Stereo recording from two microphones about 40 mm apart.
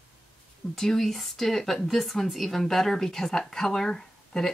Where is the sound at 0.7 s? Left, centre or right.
Centre.